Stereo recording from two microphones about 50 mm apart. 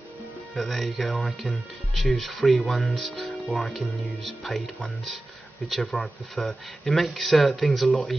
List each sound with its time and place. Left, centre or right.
0.6 s speech: centre